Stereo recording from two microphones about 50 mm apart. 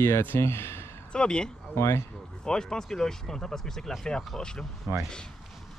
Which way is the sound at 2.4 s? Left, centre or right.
Centre.